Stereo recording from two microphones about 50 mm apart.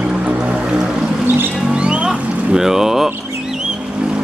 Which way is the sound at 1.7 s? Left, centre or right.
Centre.